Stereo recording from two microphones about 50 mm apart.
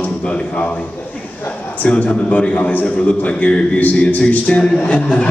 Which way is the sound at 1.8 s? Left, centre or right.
Left.